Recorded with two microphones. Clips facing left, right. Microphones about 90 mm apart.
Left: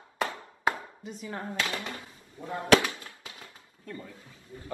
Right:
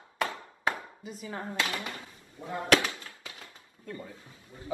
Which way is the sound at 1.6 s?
25° left (ahead or behind).